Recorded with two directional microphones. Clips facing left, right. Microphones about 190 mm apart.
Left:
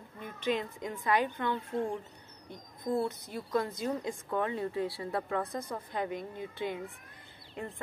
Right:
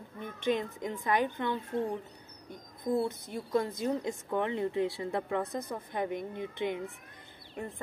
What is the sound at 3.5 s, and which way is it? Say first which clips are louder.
Speech: right 2 dB; 20° right (ahead or behind).